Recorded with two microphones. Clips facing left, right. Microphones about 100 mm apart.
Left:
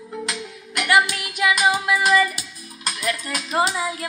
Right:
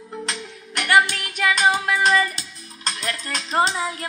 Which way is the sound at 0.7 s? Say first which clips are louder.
Right 1 dB; 35° right (ahead or behind).